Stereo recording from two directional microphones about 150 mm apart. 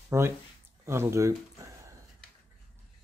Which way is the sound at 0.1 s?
20° right (ahead or behind).